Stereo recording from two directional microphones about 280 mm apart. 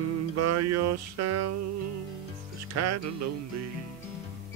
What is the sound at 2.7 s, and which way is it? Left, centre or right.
Music, right.